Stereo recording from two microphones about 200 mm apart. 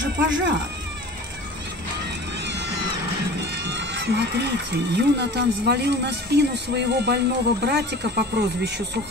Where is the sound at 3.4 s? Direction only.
55° right (ahead or behind).